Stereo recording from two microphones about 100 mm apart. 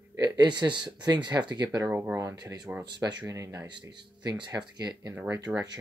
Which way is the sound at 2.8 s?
45° right (ahead or behind).